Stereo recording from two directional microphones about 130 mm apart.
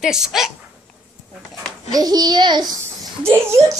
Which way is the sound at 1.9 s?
30° right (ahead or behind).